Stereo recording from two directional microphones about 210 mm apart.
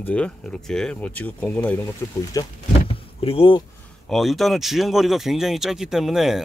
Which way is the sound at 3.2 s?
25° left (ahead or behind).